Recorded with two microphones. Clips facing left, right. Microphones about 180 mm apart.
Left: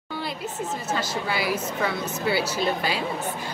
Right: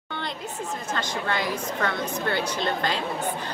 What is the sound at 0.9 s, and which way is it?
A woman's voice, 10° left (ahead or behind).